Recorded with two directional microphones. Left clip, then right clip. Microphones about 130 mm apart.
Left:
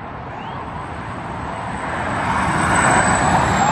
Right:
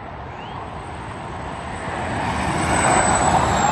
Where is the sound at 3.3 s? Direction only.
20° right (ahead or behind).